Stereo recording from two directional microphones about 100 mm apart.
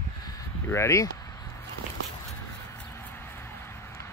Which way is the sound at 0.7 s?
30° left (ahead or behind).